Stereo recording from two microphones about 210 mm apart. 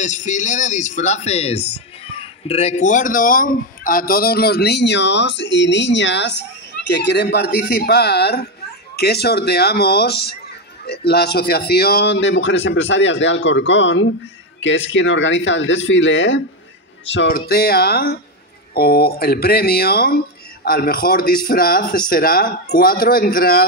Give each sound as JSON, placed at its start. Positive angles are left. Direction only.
{"t": 0.0, "sound": "speech", "side_deg": 35}
{"t": 17.5, "sound": "speech", "side_deg": 45}